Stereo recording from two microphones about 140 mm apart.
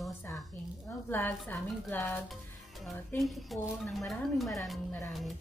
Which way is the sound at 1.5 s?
15° left (ahead or behind).